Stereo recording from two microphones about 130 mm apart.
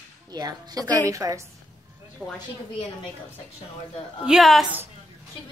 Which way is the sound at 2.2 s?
10° right (ahead or behind).